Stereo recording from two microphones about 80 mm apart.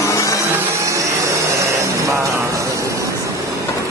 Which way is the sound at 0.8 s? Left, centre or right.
Right.